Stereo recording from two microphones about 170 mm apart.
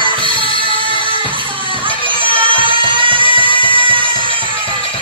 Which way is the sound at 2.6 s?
30° right (ahead or behind).